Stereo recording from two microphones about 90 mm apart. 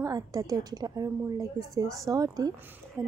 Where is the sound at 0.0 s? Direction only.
40° right (ahead or behind).